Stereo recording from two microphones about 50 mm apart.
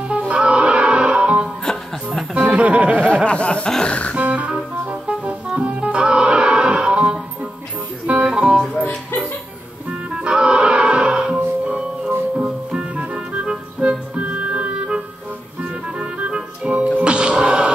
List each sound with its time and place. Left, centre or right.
0.1 s music: centre
3.3 s snicker: left
3.8 s music: left
4.2 s music: right
4.5 s music: centre
8.3 s music: centre
9.8 s music: centre